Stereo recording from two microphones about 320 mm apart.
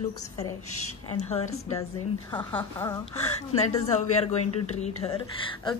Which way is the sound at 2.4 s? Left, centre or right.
Centre.